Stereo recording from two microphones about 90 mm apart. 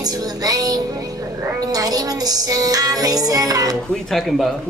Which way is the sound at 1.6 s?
45° right (ahead or behind).